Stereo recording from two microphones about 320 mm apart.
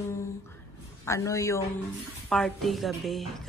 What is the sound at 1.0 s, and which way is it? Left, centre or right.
A man's voice, centre.